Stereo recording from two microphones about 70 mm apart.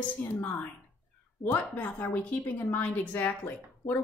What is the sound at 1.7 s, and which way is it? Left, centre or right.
A woman's voice, left.